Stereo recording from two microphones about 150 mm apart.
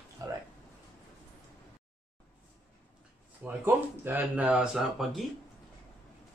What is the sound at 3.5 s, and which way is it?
Speech, 15° right (ahead or behind).